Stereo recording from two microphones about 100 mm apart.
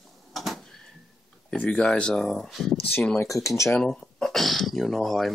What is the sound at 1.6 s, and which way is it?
Speech, 15° left (ahead or behind).